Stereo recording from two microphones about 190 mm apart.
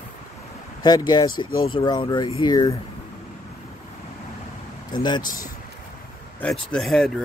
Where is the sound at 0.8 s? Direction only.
20° left (ahead or behind).